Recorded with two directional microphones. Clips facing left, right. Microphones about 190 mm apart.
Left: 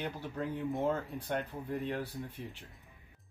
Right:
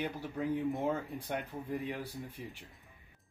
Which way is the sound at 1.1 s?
10° right (ahead or behind).